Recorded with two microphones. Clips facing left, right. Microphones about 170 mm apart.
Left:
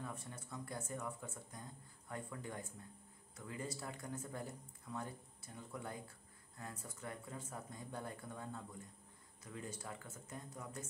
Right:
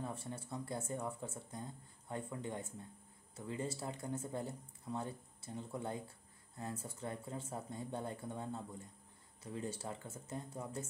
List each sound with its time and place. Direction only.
0.0 s speech: 30° right (ahead or behind)